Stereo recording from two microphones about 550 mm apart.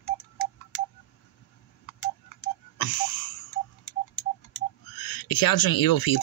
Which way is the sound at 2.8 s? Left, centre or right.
Left.